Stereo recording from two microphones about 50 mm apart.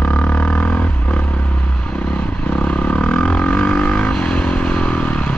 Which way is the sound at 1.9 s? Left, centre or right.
Left.